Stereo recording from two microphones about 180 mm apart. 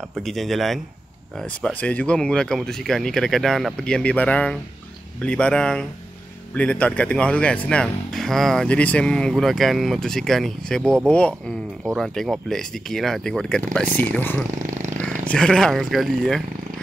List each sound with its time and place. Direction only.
0.1 s speech: centre (ahead or behind)
14.6 s a sound: 45° right (ahead or behind)
15.2 s speech: 5° left (ahead or behind)